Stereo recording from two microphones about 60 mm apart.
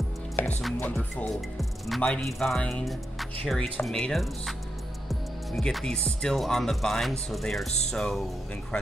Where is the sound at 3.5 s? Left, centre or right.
Left.